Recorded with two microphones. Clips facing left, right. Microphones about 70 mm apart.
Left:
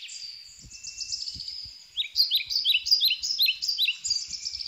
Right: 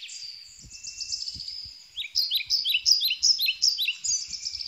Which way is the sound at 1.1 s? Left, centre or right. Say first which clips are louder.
Right 1 dB; centre.